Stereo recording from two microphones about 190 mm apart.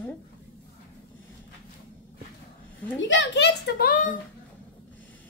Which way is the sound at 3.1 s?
65° left (ahead or behind).